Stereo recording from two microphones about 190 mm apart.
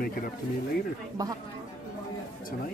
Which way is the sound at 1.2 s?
20° right (ahead or behind).